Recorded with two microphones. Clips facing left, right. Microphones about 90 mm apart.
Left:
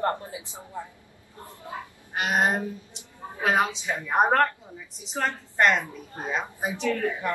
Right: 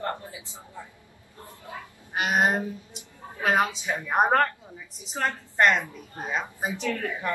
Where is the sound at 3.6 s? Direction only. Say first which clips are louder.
Even; 10° right (ahead or behind).